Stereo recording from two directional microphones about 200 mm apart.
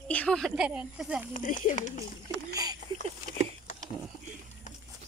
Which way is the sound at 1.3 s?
40° left (ahead or behind).